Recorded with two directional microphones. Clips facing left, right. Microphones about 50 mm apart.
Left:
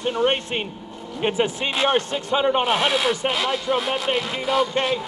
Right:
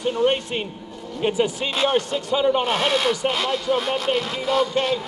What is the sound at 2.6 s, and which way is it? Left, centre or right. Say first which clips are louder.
Speech: even; centre.